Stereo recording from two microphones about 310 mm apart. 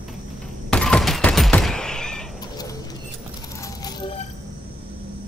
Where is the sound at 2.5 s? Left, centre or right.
Centre.